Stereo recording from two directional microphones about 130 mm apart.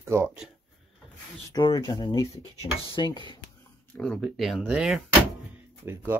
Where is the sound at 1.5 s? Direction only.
35° left (ahead or behind).